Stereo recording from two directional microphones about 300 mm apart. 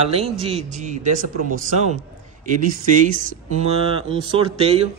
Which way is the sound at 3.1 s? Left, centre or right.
Right.